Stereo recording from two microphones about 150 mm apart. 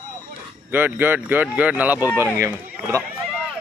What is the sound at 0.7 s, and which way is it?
Speech, 15° right (ahead or behind).